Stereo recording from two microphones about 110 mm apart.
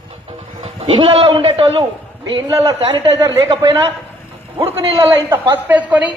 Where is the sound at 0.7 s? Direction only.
65° right (ahead or behind).